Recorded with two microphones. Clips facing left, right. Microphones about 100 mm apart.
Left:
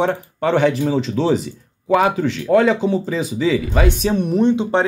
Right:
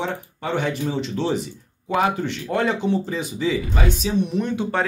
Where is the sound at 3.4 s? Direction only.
85° left; by 4.3 s 55° left (ahead or behind).